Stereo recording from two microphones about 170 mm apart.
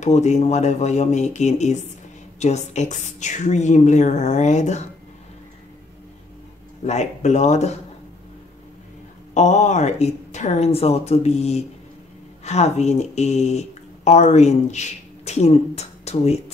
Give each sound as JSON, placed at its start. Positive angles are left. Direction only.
{"t": 0.0, "sound": "speech", "side_deg": 45}
{"t": 6.9, "sound": "speech", "side_deg": 45}
{"t": 9.3, "sound": "a woman's voice", "side_deg": 45}